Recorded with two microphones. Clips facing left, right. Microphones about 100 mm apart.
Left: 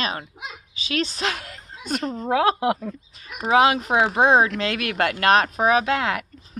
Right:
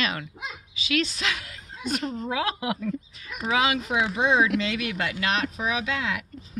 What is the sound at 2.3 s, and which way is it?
A woman's voice, 45° left (ahead or behind).